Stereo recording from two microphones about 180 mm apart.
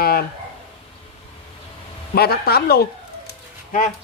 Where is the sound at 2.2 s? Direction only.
60° left (ahead or behind).